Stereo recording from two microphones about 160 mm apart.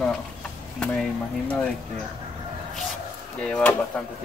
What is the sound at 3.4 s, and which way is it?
Speech, 10° left (ahead or behind).